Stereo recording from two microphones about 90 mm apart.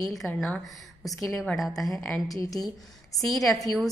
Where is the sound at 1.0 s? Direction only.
Centre (ahead or behind).